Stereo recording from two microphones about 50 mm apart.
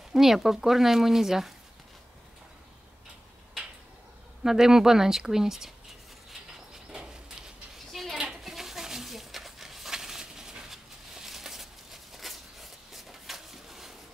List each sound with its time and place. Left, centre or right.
0.1 s speech: centre
4.4 s speech: centre
6.7 s bird: centre
7.9 s a sound: centre